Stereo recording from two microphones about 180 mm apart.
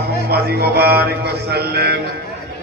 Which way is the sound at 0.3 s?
60° right (ahead or behind).